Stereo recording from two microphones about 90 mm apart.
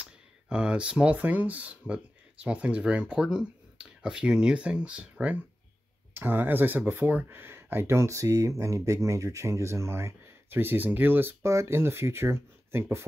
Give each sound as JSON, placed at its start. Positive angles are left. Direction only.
{"t": 0.0, "sound": "speech", "side_deg": -10}
{"t": 6.1, "sound": "speech", "side_deg": -20}